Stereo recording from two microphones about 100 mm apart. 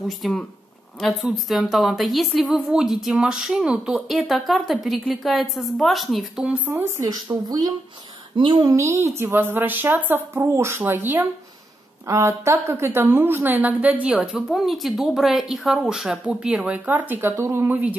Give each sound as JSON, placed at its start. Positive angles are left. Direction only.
{"t": 0.2, "sound": "a woman's voice", "side_deg": 5}
{"t": 6.4, "sound": "a woman's voice", "side_deg": -15}
{"t": 6.7, "sound": "a woman's voice", "side_deg": -35}